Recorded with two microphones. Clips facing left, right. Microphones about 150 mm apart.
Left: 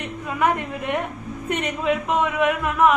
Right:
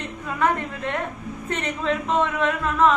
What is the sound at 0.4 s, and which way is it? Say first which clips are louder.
A woman's voice: left 1 dB; 15° left (ahead or behind).